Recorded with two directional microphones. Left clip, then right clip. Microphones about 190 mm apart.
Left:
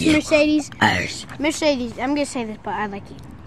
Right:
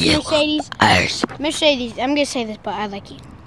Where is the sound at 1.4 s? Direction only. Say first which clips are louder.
Right 2 dB; 5° left (ahead or behind); by 3.0 s 20° right (ahead or behind).